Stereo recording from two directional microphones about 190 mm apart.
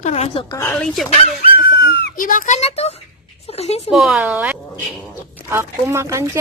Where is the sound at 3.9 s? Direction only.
Centre (ahead or behind).